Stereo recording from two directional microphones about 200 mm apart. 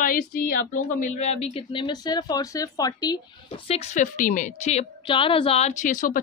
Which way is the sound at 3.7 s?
30° left (ahead or behind).